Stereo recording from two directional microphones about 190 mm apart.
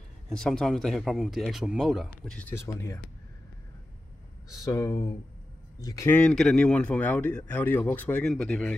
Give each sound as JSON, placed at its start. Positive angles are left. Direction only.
{"t": 0.3, "sound": "speech", "side_deg": 5}
{"t": 4.6, "sound": "speech", "side_deg": 20}